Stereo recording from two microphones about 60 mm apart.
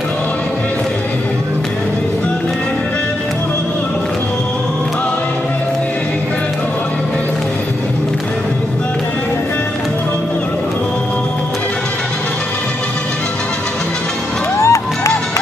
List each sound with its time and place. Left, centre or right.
14.6 s music: left